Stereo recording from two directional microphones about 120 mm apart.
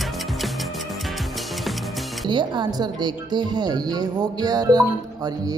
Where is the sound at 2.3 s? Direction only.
40° right (ahead or behind).